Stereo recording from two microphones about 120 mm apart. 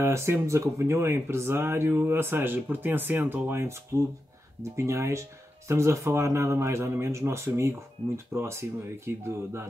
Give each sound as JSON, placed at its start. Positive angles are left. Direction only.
{"t": 0.0, "sound": "speech", "side_deg": -20}